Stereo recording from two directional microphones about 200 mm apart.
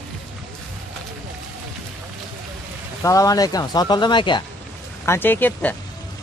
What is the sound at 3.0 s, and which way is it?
Speech, 15° left (ahead or behind).